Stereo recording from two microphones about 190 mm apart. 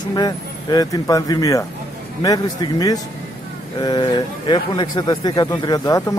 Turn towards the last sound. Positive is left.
turn(degrees=20)  # may be behind; listen again after turning